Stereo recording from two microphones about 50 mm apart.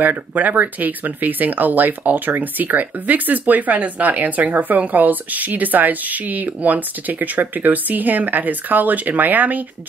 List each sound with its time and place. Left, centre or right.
0.0 s speech: right